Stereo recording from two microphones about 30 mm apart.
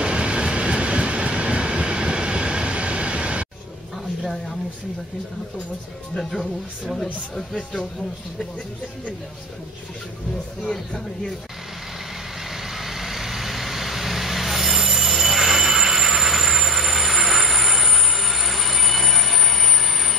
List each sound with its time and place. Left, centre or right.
0.0 s train: right
4.2 s a sound: centre
7.0 s speech: centre
10.6 s speech: centre
12.7 s vehicle: centre